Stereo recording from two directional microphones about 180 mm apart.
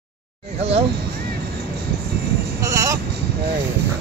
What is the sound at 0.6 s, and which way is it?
Speech, 35° right (ahead or behind).